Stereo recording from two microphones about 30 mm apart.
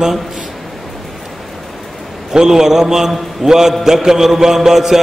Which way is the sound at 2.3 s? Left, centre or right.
Centre.